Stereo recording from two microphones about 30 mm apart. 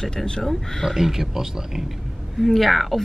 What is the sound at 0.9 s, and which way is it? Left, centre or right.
Speech, centre.